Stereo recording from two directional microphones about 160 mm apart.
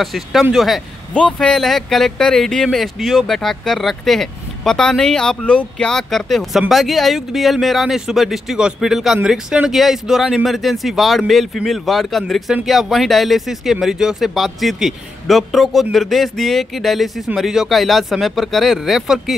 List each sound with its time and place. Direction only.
0.0 s speech: centre (ahead or behind)